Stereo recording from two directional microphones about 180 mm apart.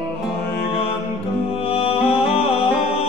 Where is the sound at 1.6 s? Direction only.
30° left (ahead or behind).